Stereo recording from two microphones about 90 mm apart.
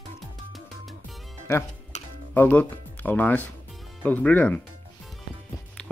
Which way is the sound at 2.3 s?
20° left (ahead or behind).